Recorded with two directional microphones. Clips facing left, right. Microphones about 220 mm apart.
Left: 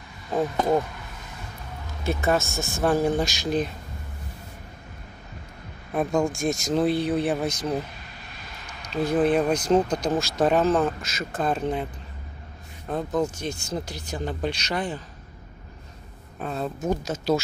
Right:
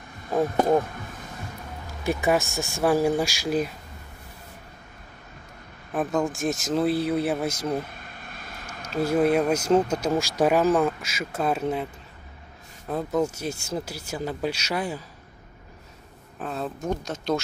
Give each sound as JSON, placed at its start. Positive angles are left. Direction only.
{"t": 0.6, "sound": "speech", "side_deg": -15}
{"t": 2.0, "sound": "speech", "side_deg": -15}
{"t": 5.9, "sound": "speech", "side_deg": -5}
{"t": 7.8, "sound": "vehicle", "side_deg": -50}
{"t": 8.9, "sound": "speech", "side_deg": -10}
{"t": 16.3, "sound": "speech", "side_deg": 0}